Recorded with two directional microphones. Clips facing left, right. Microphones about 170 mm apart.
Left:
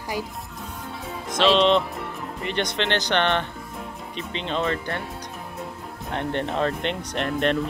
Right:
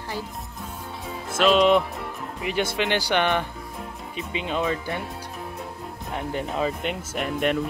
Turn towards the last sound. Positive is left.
turn(degrees=-5)  # may be behind; listen again after turning